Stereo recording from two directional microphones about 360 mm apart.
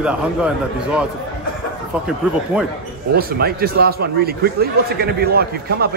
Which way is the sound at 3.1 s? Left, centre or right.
Right.